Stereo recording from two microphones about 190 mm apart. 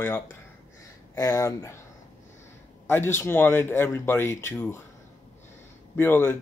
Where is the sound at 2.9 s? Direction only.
10° left (ahead or behind).